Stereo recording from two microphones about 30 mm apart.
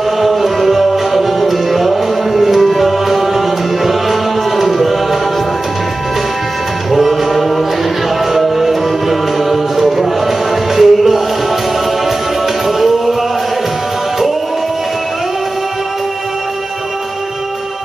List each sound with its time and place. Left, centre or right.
0.2 s music: centre
6.9 s music: centre
12.6 s music: centre